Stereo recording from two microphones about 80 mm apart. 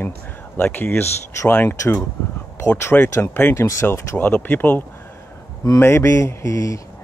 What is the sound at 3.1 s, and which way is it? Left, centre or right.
Speech, left.